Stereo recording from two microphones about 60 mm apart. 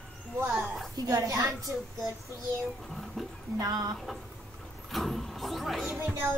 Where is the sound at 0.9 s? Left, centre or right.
Right.